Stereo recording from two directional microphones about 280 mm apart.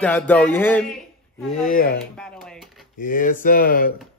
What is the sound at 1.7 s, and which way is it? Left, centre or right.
Speech, left.